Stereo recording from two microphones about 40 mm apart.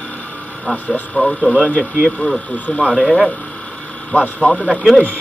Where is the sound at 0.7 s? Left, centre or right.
Left.